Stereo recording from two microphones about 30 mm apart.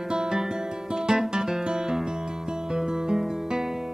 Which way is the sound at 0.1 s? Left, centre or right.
Centre.